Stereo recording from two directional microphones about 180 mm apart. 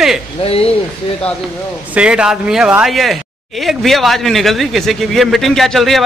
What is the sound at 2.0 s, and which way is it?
Speech, 5° right (ahead or behind).